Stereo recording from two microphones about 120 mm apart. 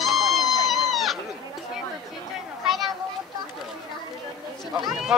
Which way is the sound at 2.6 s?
Centre (ahead or behind).